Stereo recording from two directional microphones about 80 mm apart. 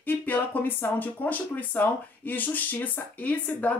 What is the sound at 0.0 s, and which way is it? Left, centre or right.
Speech, left.